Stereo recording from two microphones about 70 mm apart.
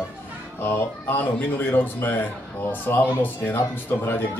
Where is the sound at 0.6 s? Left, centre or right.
Left.